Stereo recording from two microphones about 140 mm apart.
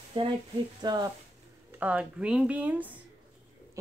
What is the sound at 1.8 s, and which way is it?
Speech, 10° right (ahead or behind).